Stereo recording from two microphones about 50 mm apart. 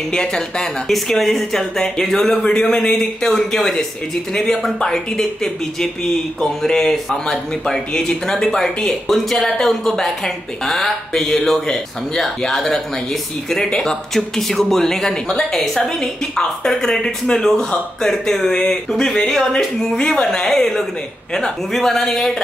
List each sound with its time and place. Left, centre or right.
0.1 s speech: centre